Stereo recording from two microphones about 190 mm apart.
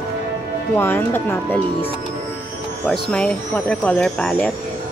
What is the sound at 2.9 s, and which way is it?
Speech, 5° left (ahead or behind).